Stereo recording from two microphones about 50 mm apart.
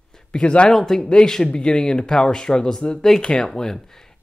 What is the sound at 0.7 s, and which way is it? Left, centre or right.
Speech, centre.